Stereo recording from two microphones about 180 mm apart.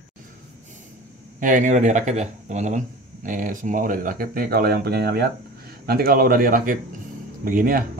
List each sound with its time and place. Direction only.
1.4 s speech: 45° right (ahead or behind)